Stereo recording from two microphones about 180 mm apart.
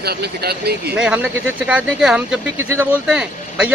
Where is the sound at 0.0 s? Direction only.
60° right (ahead or behind).